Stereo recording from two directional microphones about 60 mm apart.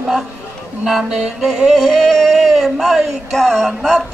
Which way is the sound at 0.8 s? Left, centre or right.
Centre.